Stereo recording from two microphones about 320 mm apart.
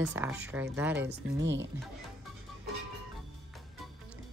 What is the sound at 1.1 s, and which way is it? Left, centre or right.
Speech, right.